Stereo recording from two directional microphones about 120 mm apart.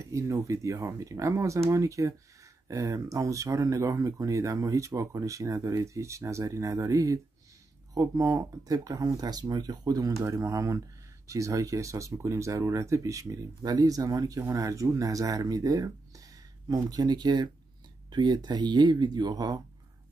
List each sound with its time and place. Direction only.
0.0 s speech: 25° right (ahead or behind)